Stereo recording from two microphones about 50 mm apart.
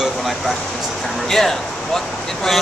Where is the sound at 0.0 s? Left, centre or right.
Centre.